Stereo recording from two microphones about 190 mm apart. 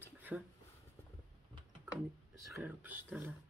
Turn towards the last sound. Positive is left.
turn(degrees=-10)  # may be behind; listen again after turning